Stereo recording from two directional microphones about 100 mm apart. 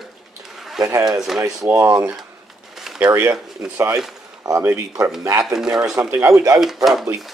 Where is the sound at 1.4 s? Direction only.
30° right (ahead or behind).